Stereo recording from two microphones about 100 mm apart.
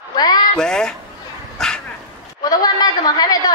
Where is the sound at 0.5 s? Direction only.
5° left (ahead or behind).